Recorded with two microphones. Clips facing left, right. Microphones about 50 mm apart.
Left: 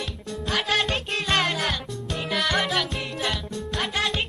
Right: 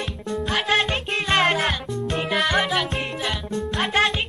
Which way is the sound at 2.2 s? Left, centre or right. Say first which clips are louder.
Right 2 dB; centre.